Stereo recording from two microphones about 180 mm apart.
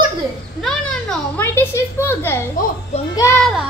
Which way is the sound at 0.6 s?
5° left (ahead or behind).